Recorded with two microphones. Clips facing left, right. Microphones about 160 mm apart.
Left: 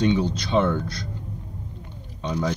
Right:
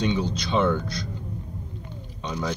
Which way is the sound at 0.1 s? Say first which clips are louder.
Left 3 dB; 10° left (ahead or behind).